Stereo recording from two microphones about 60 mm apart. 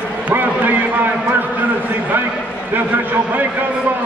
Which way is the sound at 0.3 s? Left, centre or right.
Right.